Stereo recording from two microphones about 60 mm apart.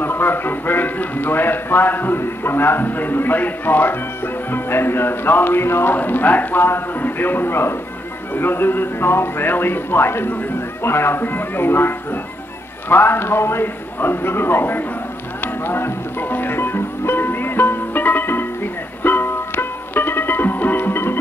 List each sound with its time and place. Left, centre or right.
0.0 s a man's voice: left
5.9 s a man's voice: left
15.4 s music: left